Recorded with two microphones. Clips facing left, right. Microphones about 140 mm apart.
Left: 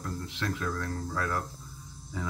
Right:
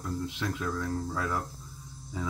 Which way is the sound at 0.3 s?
15° right (ahead or behind).